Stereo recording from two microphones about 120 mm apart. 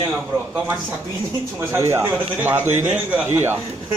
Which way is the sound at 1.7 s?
25° right (ahead or behind).